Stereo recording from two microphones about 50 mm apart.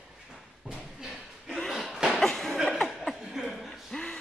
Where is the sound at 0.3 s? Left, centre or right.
Centre.